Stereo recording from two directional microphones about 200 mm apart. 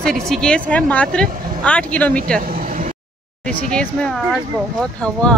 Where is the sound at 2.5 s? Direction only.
45° right (ahead or behind).